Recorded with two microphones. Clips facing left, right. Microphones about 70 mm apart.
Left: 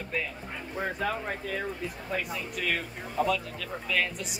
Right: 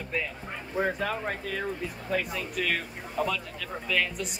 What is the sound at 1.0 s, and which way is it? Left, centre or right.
A woman's voice, centre.